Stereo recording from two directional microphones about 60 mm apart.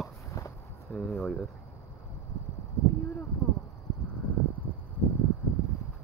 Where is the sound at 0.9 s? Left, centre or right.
Left.